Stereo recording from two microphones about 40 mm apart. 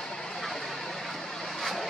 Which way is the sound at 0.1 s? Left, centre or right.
Centre.